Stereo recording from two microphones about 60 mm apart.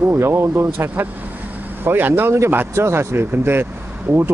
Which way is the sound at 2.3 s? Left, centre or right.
Right.